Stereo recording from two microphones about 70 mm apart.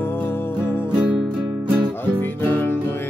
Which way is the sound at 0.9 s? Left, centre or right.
Centre.